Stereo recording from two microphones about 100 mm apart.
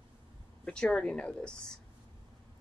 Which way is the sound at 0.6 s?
10° left (ahead or behind).